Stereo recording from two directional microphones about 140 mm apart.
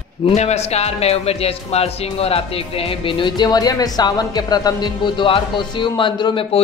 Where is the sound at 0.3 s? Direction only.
50° left (ahead or behind).